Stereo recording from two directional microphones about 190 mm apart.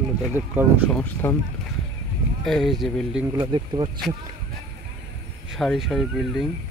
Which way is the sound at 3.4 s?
25° right (ahead or behind).